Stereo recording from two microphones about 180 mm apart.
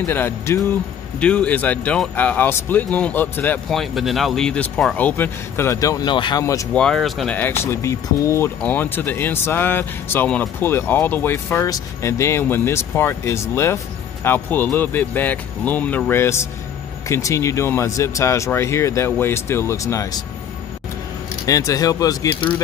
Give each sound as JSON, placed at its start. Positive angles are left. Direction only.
{"t": 0.0, "sound": "speech", "side_deg": 15}
{"t": 6.7, "sound": "speech", "side_deg": 5}
{"t": 21.5, "sound": "speech", "side_deg": 20}